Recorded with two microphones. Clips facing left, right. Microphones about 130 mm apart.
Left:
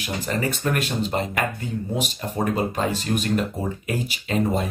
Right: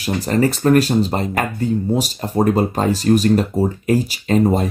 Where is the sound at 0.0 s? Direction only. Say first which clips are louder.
Right 8 dB; 35° right (ahead or behind).